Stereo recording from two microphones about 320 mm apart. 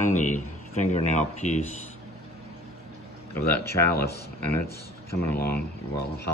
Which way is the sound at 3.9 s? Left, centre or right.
Left.